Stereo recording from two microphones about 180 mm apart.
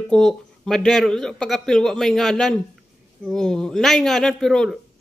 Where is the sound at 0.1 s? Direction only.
5° left (ahead or behind).